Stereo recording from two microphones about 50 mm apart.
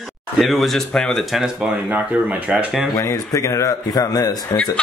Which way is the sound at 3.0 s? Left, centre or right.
Left.